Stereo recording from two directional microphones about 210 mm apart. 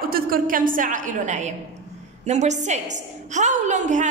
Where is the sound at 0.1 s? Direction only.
40° right (ahead or behind).